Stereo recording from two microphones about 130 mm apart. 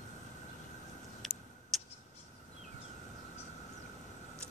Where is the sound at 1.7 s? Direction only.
Centre (ahead or behind).